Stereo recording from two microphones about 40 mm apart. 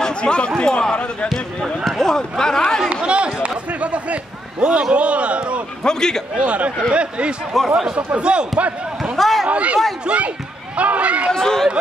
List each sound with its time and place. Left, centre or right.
0.0 s chatter: left
0.6 s speech: left
1.9 s a sound: centre
2.1 s speech: centre
2.9 s a sound: right
5.9 s a man's voice: centre
6.3 s a man's voice: right
7.5 s speech: centre
7.9 s a man's voice: right
8.5 s speech: right
9.1 s a sound: centre
9.5 s speech: right
11.3 s speech: centre